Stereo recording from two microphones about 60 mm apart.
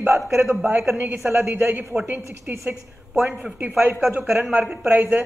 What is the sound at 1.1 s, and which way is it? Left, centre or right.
Speech, right.